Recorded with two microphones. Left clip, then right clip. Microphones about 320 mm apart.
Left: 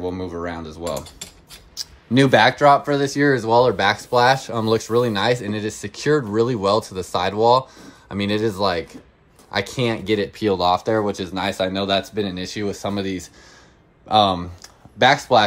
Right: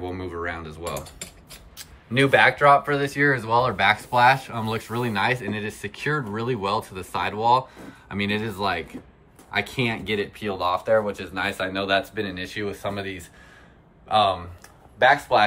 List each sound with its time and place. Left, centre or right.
0.0 s speech: centre
1.8 s speech: centre